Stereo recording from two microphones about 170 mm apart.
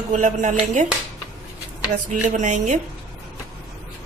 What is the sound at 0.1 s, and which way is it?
Speech, 45° right (ahead or behind).